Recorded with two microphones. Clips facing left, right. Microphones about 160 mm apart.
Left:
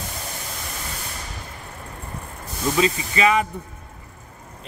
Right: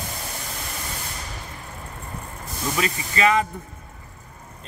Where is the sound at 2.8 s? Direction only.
20° left (ahead or behind).